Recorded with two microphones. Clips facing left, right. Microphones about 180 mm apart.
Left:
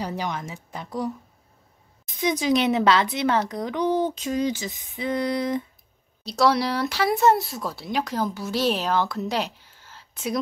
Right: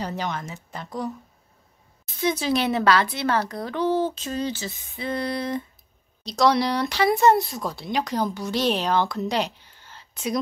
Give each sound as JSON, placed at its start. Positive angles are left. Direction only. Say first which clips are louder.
{"t": 0.0, "sound": "speech", "louder": "even", "side_deg": 10}
{"t": 6.2, "sound": "speech", "louder": "right 1 dB", "side_deg": 5}